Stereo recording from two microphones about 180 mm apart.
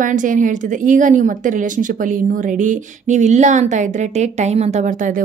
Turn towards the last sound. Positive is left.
turn(degrees=-45)  # may be behind; listen again after turning